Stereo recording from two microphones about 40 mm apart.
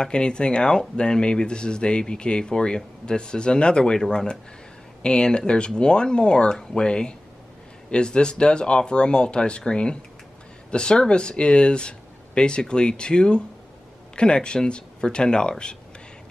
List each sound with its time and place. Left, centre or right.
0.0 s speech: left